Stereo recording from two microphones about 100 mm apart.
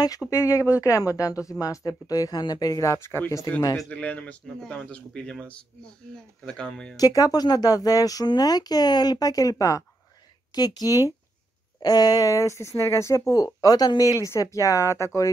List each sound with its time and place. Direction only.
0.3 s speech: 30° left (ahead or behind)
3.9 s speech: 15° left (ahead or behind)
7.0 s speech: 40° left (ahead or behind)